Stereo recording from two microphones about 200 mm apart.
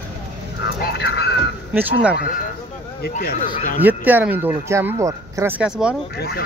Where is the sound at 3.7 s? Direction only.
10° right (ahead or behind).